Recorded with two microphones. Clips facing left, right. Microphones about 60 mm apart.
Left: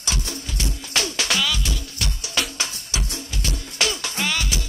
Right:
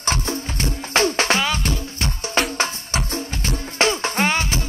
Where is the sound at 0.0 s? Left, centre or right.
Right.